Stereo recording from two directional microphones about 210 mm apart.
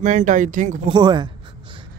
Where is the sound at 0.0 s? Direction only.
35° right (ahead or behind).